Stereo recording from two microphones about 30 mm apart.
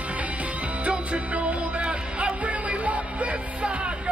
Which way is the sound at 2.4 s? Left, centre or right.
Right.